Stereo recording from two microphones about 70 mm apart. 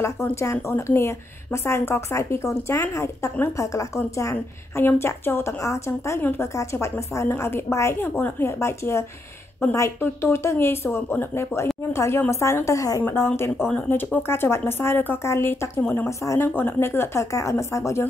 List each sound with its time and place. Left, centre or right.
0.0 s a woman's voice: left
4.8 s a woman's voice: left
13.0 s a woman's voice: left
15.8 s speech: left
16.1 s a woman's voice: left
16.3 s a woman's voice: left